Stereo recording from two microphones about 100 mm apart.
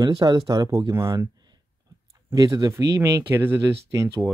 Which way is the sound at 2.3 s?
40° right (ahead or behind).